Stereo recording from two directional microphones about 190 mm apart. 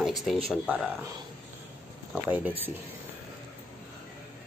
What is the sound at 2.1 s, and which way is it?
Speech, 5° right (ahead or behind).